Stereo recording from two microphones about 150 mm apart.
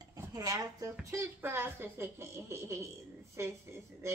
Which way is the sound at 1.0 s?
15° right (ahead or behind).